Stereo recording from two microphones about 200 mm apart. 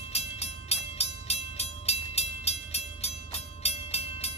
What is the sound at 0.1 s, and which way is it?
Music, 30° left (ahead or behind).